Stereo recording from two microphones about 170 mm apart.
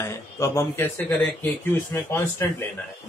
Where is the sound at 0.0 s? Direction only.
15° left (ahead or behind).